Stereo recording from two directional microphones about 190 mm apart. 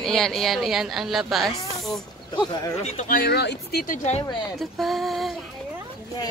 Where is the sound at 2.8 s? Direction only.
40° left (ahead or behind).